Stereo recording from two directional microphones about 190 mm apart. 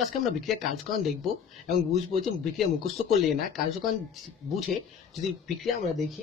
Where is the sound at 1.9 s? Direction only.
35° right (ahead or behind).